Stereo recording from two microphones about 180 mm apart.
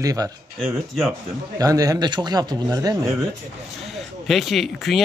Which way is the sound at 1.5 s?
20° right (ahead or behind).